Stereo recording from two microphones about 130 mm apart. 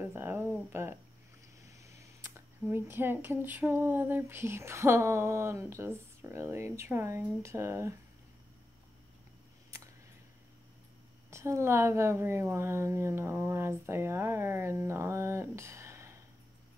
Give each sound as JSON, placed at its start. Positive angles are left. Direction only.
{"t": 0.0, "sound": "speech", "side_deg": -15}
{"t": 11.2, "sound": "speech", "side_deg": -20}